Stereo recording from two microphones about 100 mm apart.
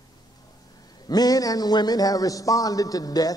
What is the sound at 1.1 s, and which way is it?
A man's voice, 40° left (ahead or behind).